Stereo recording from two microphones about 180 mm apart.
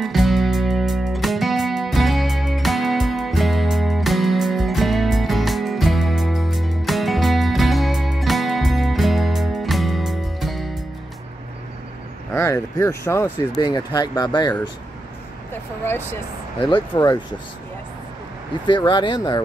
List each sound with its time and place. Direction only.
0.0 s music: centre (ahead or behind)
12.4 s a sound: 15° left (ahead or behind)
13.6 s speech: 25° left (ahead or behind)
15.5 s speech: 10° left (ahead or behind)
16.9 s speech: 25° left (ahead or behind)
18.7 s speech: 25° left (ahead or behind)